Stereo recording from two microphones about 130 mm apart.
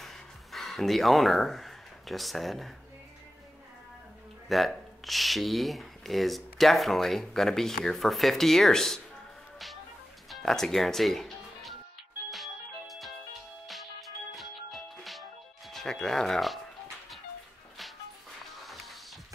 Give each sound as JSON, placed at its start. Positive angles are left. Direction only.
{"t": 0.0, "sound": "music", "side_deg": 0}
{"t": 4.5, "sound": "speech", "side_deg": 0}
{"t": 10.3, "sound": "speech", "side_deg": 5}
{"t": 12.3, "sound": "music", "side_deg": 0}
{"t": 15.7, "sound": "speech", "side_deg": 5}